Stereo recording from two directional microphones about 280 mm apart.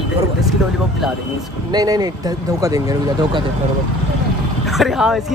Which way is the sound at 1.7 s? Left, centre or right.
Centre.